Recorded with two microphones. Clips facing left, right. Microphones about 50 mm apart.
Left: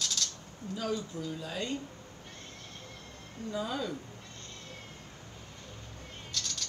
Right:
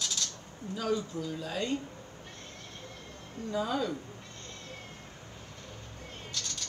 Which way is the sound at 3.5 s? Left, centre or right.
Centre.